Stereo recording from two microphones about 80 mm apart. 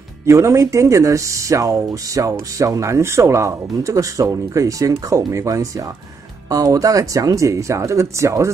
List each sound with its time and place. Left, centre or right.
0.3 s speech: right